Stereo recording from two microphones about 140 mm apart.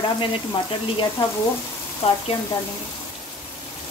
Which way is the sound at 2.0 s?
40° left (ahead or behind).